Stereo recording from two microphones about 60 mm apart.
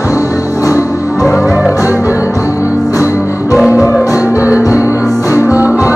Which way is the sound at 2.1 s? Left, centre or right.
Left.